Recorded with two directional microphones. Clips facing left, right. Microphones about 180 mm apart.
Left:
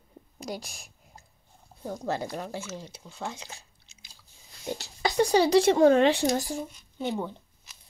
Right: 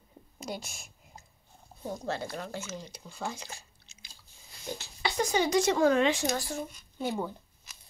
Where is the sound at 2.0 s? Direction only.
15° left (ahead or behind).